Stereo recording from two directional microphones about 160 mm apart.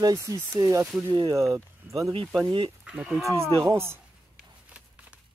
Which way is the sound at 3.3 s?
15° right (ahead or behind).